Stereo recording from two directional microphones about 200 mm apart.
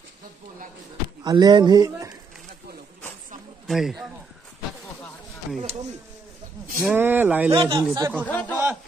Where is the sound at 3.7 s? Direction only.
Centre (ahead or behind).